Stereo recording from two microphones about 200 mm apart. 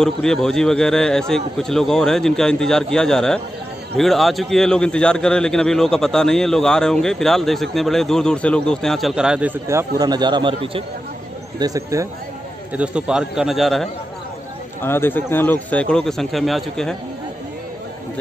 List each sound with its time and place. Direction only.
0.0 s a man's voice: 5° left (ahead or behind); by 12.1 s 15° right (ahead or behind)
12.7 s a man's voice: 5° right (ahead or behind)
14.8 s a man's voice: 10° left (ahead or behind)